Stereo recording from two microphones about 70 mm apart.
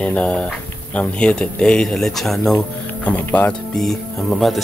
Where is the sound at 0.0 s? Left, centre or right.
Centre.